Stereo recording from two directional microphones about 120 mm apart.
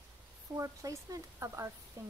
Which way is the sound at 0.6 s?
30° right (ahead or behind).